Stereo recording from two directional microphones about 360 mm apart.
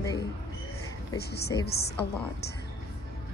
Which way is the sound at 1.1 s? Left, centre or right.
Left.